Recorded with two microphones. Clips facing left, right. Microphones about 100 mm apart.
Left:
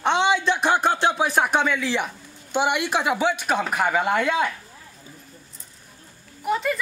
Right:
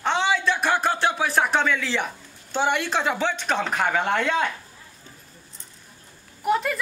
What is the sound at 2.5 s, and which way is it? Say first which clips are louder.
Speech: left 1 dB; 15° left (ahead or behind).